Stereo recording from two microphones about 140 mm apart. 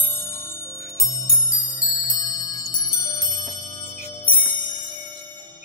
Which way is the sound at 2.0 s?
30° left (ahead or behind).